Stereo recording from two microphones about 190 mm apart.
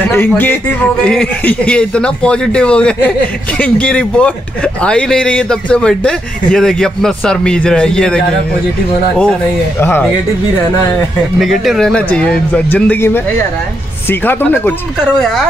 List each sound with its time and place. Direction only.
0.0 s a man's voice: 10° left (ahead or behind)
9.8 s speech: 10° left (ahead or behind)
11.3 s a man's voice: centre (ahead or behind)